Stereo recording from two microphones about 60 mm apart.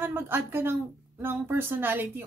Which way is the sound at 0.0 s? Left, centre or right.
Right.